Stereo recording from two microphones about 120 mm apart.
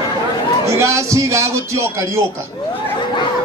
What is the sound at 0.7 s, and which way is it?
A man's voice, 25° right (ahead or behind).